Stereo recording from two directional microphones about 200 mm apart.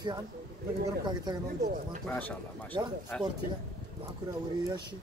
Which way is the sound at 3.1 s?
5° left (ahead or behind).